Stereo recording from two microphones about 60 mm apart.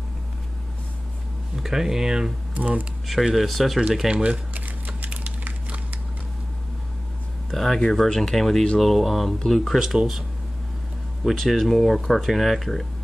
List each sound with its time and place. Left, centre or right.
1.6 s speech: centre
2.5 s speech: right
3.1 s speech: centre
4.1 s crumpling: right
7.5 s speech: centre
11.3 s speech: centre